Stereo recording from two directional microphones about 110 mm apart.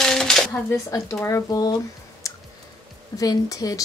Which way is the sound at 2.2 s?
30° left (ahead or behind).